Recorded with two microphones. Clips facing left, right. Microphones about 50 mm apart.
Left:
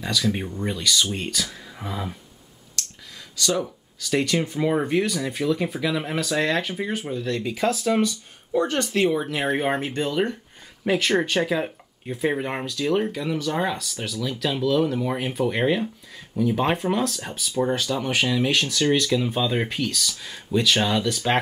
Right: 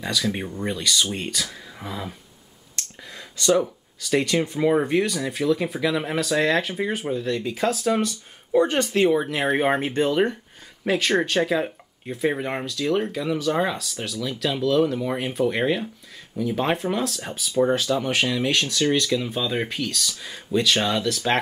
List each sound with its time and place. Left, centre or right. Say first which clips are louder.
0.0 s speech: left 1 dB; centre
3.3 s speech: right 5 dB; centre
3.6 s speech: right 1 dB; centre
10.9 s speech: even; centre